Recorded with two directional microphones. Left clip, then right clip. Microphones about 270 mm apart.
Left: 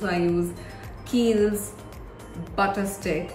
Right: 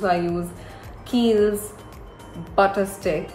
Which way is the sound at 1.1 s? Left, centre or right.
Centre.